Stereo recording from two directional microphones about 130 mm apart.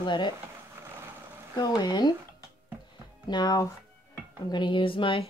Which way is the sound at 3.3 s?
30° left (ahead or behind).